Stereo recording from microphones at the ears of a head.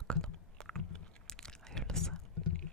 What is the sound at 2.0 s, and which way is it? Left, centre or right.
Whispering, left.